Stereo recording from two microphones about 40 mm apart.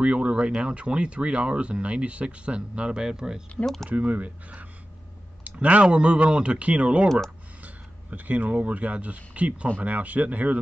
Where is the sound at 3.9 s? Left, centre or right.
Right.